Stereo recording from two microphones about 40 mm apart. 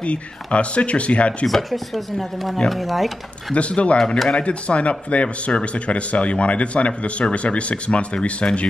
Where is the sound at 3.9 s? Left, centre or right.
Centre.